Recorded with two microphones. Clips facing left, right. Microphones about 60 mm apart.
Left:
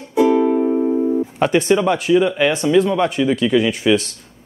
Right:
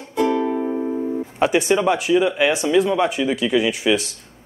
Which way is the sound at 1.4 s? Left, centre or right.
Centre.